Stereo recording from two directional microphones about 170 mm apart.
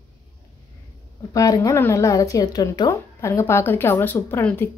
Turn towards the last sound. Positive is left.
turn(degrees=15)  # may be behind; listen again after turning